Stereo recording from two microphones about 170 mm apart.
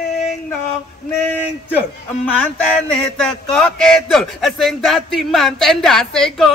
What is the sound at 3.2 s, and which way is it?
Speech, 5° left (ahead or behind).